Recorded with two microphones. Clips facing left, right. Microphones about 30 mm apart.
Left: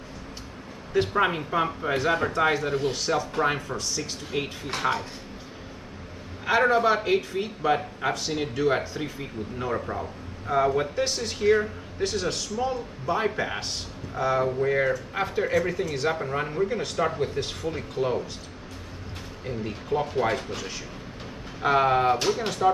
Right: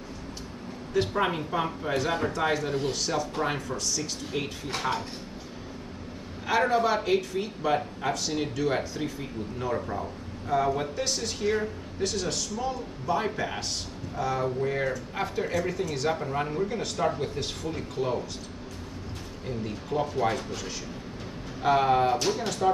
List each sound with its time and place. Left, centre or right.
1.0 s speech: centre
6.4 s speech: centre
19.4 s speech: centre
21.6 s speech: centre